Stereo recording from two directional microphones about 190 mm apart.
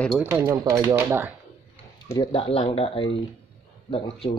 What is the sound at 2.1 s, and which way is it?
Speech, 25° left (ahead or behind).